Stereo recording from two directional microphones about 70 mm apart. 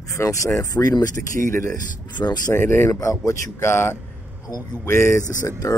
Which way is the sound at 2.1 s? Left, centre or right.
Left.